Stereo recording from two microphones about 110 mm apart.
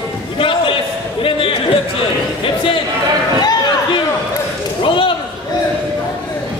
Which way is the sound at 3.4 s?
40° left (ahead or behind).